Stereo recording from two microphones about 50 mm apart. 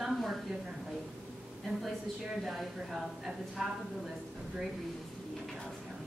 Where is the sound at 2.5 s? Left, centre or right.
Centre.